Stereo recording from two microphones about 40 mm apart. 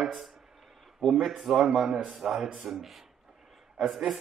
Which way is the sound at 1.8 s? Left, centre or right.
Centre.